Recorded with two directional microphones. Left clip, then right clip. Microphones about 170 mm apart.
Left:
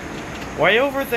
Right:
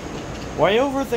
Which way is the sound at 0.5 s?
20° right (ahead or behind).